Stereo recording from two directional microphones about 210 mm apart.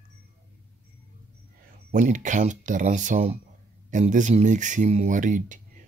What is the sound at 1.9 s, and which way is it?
Speech, 35° right (ahead or behind).